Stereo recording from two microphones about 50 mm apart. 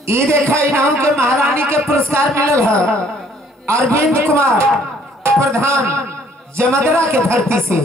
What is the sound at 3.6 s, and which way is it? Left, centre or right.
A woman's voice, right.